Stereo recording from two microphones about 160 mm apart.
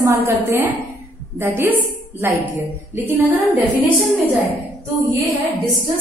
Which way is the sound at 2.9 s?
10° right (ahead or behind).